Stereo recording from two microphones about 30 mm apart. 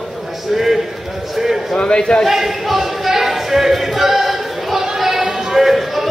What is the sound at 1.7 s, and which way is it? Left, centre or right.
Speech, left.